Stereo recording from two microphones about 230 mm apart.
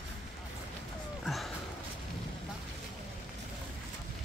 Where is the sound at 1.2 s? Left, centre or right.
Centre.